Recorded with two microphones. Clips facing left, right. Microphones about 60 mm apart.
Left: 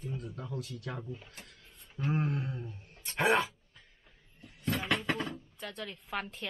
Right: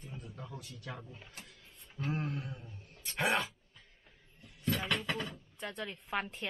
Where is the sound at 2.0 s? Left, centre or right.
Centre.